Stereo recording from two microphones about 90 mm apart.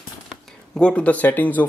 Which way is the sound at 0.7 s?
10° left (ahead or behind).